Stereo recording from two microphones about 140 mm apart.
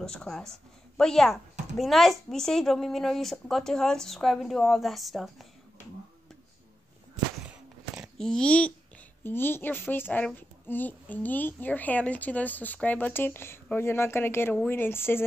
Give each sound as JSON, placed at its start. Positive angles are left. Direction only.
{"t": 0.0, "sound": "a woman's voice", "side_deg": 5}
{"t": 7.4, "sound": "a sound", "side_deg": -10}
{"t": 8.2, "sound": "speech", "side_deg": 5}